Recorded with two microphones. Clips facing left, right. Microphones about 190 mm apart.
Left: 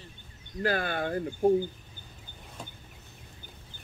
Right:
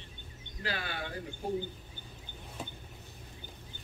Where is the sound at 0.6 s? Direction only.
50° left (ahead or behind).